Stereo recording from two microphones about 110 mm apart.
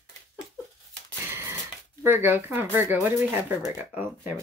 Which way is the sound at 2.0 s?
20° right (ahead or behind).